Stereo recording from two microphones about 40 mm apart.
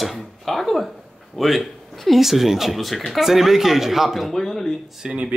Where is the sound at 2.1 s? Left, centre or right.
Centre.